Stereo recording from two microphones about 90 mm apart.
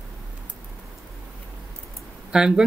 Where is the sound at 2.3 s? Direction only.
5° right (ahead or behind).